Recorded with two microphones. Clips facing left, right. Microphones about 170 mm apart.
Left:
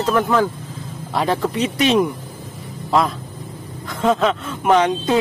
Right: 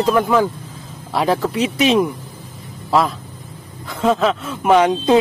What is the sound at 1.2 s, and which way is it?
Speech, 5° right (ahead or behind).